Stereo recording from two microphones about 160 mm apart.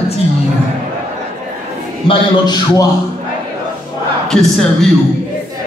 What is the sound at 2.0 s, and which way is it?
Speech, 25° left (ahead or behind).